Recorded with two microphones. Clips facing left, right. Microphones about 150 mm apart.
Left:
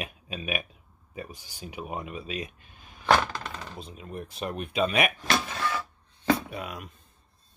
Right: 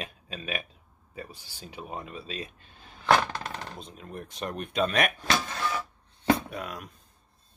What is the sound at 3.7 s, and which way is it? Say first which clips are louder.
Speech: left 2 dB; 5° left (ahead or behind).